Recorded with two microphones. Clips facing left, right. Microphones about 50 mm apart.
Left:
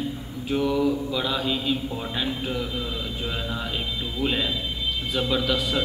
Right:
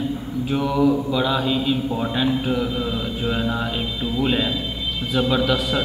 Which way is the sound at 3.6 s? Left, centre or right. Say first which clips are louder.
Right 5 dB; centre.